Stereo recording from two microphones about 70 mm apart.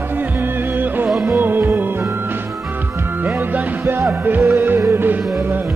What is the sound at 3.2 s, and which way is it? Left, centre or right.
Music, right.